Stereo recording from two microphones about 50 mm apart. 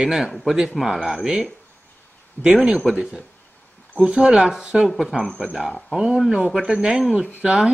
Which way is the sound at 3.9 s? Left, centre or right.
Centre.